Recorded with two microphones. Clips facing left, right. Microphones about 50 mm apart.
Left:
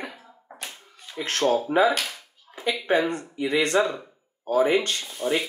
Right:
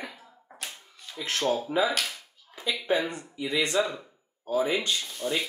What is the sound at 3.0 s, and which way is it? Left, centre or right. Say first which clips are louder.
Speech: left 6 dB; left.